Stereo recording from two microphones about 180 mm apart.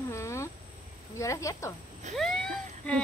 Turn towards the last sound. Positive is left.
turn(degrees=5)  # may be behind; listen again after turning